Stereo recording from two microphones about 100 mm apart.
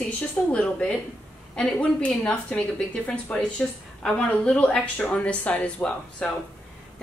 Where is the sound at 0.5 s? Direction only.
10° left (ahead or behind).